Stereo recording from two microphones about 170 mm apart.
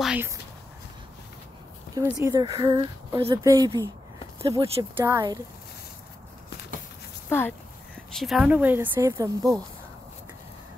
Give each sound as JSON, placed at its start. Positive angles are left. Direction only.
{"t": 0.0, "sound": "a sound", "side_deg": -5}
{"t": 2.1, "sound": "speech", "side_deg": -20}
{"t": 4.4, "sound": "speech", "side_deg": -35}
{"t": 4.9, "sound": "speech", "side_deg": -20}
{"t": 7.2, "sound": "speech", "side_deg": 10}
{"t": 8.1, "sound": "a woman's voice", "side_deg": 0}